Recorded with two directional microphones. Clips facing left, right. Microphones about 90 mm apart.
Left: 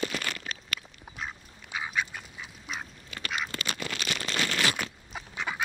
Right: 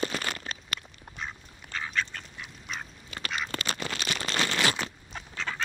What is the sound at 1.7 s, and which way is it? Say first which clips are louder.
Duck: even; 10° left (ahead or behind).